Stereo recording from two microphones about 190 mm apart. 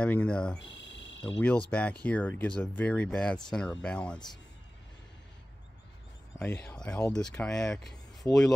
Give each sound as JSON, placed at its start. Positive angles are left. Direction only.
{"t": 0.0, "sound": "speech", "side_deg": 5}
{"t": 0.6, "sound": "cricket", "side_deg": 70}
{"t": 1.7, "sound": "speech", "side_deg": 5}
{"t": 6.4, "sound": "speech", "side_deg": 10}